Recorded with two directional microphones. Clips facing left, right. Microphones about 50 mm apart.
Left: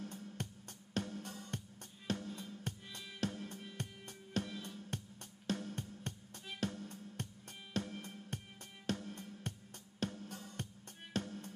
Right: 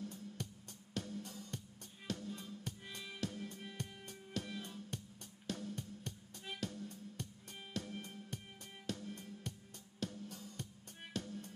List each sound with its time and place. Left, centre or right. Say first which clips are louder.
0.0 s music: left 1 dB; left